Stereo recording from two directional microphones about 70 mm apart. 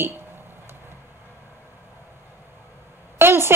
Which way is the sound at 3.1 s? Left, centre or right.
Right.